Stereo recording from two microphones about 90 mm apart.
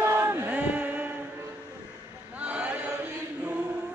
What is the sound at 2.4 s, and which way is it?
Chant, 15° right (ahead or behind).